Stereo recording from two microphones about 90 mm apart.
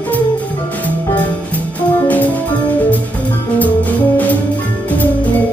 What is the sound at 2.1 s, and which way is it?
Music, 20° left (ahead or behind).